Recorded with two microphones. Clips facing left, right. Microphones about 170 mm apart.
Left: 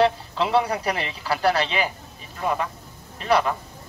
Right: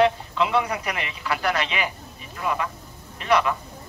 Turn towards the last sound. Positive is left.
turn(degrees=35)  # may be behind; listen again after turning